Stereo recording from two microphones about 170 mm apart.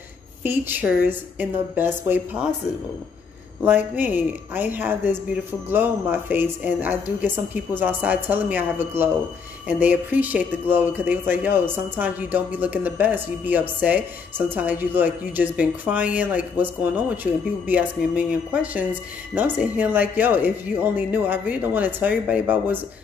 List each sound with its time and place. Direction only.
0.4 s speech: 10° right (ahead or behind)
3.6 s speech: 10° right (ahead or behind)